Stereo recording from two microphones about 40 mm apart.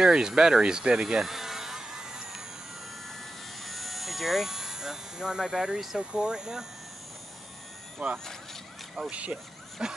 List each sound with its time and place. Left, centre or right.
0.0 s a sound: centre
3.6 s electric shaver: centre
5.9 s speech: centre
8.0 s speech: right
9.1 s speech: right
9.8 s speech: centre